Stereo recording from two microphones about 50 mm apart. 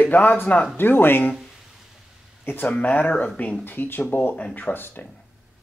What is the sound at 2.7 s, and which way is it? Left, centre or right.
Speech, left.